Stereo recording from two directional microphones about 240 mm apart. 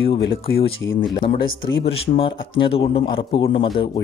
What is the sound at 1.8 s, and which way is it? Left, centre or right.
A man's voice, left.